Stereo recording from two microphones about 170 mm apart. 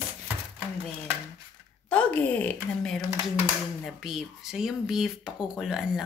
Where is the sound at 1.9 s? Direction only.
10° left (ahead or behind).